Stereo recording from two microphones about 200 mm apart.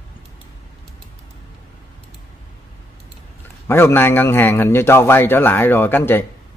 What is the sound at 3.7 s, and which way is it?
A man's voice, 10° left (ahead or behind).